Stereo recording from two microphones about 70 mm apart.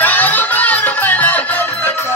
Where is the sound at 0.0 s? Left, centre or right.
Left.